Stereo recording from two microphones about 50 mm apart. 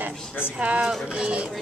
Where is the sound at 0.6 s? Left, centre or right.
Right.